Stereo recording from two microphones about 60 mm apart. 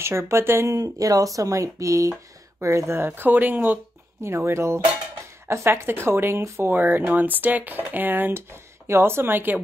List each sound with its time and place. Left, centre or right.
0.0 s speech: right
0.7 s speech: right
4.2 s speech: right
6.4 s speech: right
6.7 s speech: right